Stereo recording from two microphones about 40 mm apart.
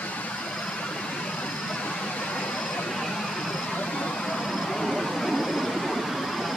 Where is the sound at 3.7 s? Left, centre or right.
Left.